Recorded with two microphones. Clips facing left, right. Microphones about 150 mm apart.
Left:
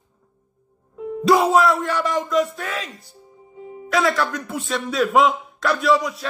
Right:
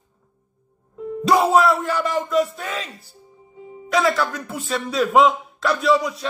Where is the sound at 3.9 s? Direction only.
Centre (ahead or behind).